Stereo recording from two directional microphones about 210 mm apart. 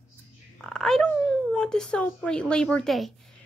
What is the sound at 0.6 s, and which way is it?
A woman's voice, 5° left (ahead or behind).